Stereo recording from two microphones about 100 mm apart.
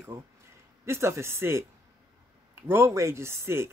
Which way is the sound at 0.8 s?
25° right (ahead or behind).